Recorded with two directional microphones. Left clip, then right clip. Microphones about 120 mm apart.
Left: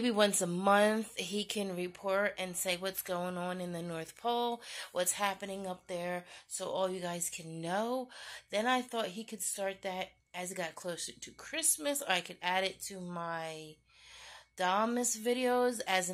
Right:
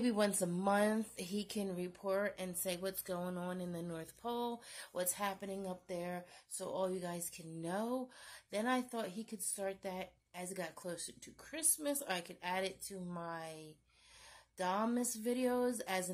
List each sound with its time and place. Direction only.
0.0 s a woman's voice: 30° left (ahead or behind)